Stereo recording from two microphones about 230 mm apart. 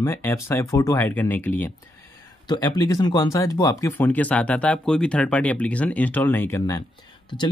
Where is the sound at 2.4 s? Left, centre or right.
Centre.